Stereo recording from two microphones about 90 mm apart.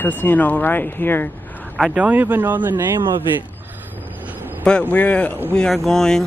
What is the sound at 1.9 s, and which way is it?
Speech, 15° right (ahead or behind).